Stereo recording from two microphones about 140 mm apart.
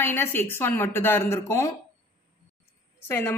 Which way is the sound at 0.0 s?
15° left (ahead or behind).